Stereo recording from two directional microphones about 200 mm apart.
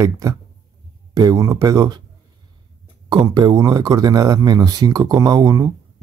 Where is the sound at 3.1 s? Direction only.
20° right (ahead or behind).